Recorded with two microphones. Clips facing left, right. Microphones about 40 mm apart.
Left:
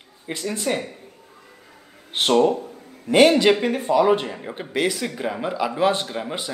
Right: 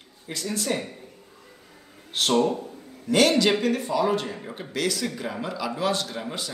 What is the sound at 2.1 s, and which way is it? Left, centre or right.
Speech, left.